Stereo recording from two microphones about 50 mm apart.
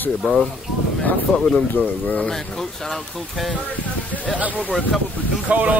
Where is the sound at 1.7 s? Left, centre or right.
Left.